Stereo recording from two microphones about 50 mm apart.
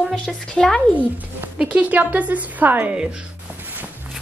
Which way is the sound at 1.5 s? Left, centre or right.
Right.